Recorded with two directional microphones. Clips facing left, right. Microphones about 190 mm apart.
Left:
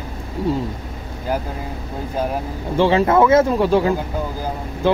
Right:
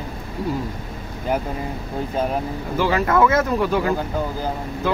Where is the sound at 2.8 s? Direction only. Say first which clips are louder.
Left 4 dB; 25° left (ahead or behind).